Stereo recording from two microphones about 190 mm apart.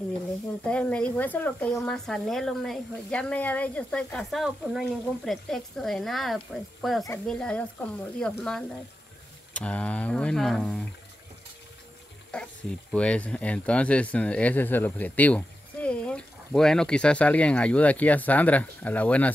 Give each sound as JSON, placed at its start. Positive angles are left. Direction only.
{"t": 0.7, "sound": "speech", "side_deg": 5}
{"t": 12.3, "sound": "speech", "side_deg": 5}